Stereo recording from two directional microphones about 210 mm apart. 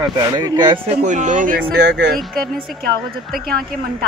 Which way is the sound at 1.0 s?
35° right (ahead or behind).